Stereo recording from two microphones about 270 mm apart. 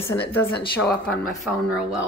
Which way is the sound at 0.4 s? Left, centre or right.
Centre.